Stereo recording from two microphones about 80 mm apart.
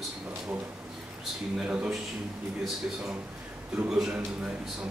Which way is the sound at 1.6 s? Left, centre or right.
Centre.